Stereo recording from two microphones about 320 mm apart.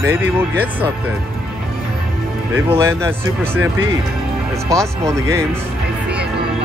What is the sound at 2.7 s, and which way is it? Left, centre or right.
Speech, centre.